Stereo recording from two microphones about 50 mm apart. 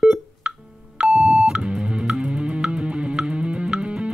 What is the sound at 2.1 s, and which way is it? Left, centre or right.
Music, centre.